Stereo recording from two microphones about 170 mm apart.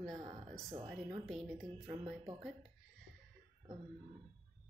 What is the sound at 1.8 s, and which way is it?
Speech, 30° right (ahead or behind).